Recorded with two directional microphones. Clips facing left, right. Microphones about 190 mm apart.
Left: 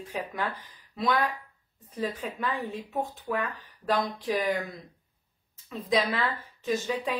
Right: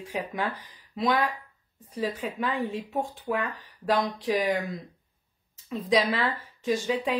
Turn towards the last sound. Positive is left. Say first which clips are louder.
# right 2 dB
turn(degrees=-15)  # may be behind; listen again after turning